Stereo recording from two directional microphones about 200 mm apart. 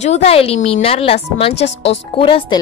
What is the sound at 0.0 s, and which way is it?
Speech, 30° left (ahead or behind).